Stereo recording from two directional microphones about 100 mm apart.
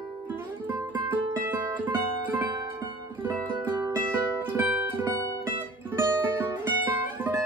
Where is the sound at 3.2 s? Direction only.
20° right (ahead or behind).